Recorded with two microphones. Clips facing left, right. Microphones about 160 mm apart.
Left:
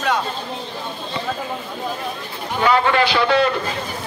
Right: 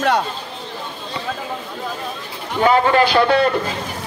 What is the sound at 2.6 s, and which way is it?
Speech, 40° right (ahead or behind).